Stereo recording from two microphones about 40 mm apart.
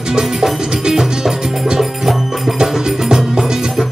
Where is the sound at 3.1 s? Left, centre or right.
Centre.